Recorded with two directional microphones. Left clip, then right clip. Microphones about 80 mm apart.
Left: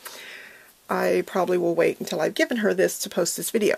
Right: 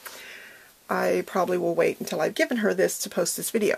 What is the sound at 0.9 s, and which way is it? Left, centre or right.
Speech, left.